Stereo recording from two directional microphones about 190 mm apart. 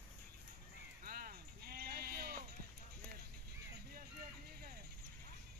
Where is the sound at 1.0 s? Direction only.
50° right (ahead or behind).